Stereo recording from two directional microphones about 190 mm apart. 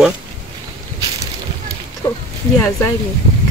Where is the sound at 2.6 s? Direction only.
15° left (ahead or behind).